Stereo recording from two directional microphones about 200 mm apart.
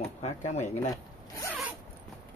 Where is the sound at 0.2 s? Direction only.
35° left (ahead or behind).